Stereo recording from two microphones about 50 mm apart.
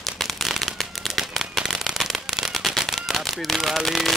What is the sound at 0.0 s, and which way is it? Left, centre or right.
Shuffling cards, centre.